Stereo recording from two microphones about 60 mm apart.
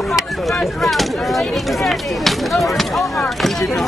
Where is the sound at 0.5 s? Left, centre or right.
Centre.